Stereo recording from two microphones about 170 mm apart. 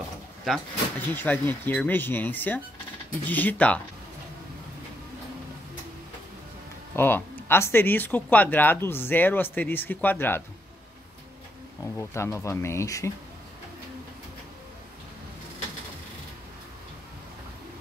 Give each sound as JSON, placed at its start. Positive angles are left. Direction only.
{"t": 0.5, "sound": "speech", "side_deg": 10}
{"t": 7.0, "sound": "speech", "side_deg": 10}
{"t": 11.8, "sound": "speech", "side_deg": 15}